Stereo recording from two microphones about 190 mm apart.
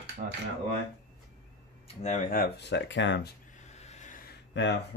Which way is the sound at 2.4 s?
60° left (ahead or behind).